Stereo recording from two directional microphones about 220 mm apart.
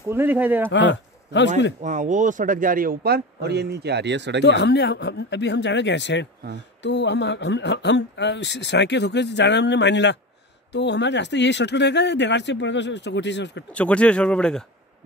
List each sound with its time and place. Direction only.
0.1 s speech: 10° right (ahead or behind)
0.7 s a man's voice: 55° left (ahead or behind)
1.8 s speech: 35° right (ahead or behind); by 4.4 s 50° right (ahead or behind)
4.4 s speech: 50° left (ahead or behind)
13.7 s speech: 5° left (ahead or behind)